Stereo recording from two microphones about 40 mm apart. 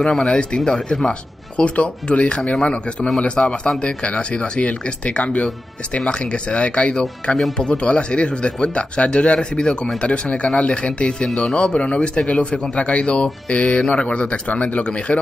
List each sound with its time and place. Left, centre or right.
0.2 s a man's voice: left
1.6 s a man's voice: left